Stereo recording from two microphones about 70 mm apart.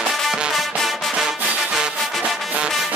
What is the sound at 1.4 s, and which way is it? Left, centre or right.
Music, centre.